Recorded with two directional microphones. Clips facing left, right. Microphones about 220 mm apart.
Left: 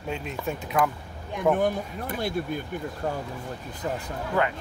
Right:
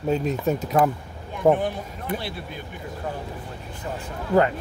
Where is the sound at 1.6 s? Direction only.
45° left (ahead or behind).